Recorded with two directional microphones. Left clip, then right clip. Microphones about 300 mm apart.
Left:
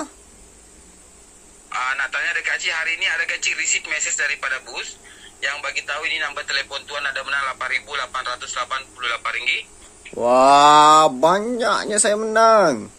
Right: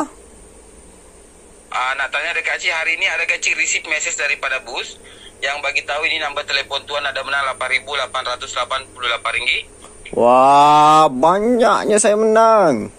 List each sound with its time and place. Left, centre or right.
1.7 s a man's voice: centre
10.1 s speech: centre